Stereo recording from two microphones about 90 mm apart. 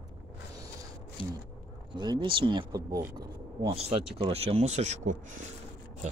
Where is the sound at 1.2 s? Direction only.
80° left.